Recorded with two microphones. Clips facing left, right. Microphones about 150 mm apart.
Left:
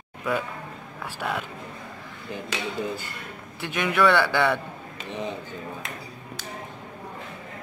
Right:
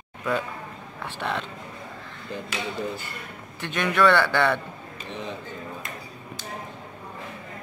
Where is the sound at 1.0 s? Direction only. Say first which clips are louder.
Even; 5° left (ahead or behind).